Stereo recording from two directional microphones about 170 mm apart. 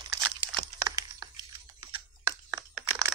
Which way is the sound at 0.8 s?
20° right (ahead or behind).